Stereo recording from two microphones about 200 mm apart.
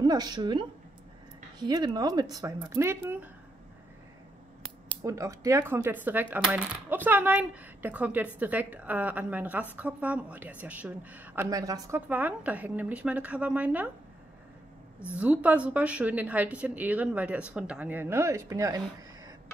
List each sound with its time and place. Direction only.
0.0 s speech: 20° right (ahead or behind)
5.0 s speech: 15° right (ahead or behind)
15.1 s speech: 5° right (ahead or behind)